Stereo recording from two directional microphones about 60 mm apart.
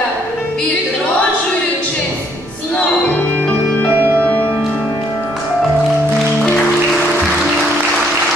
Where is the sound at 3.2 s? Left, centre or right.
Left.